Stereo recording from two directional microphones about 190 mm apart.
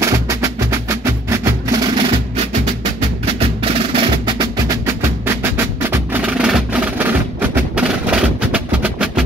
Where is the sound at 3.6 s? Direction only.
30° right (ahead or behind).